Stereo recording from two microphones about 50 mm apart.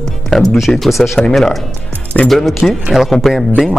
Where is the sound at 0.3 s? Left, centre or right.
Centre.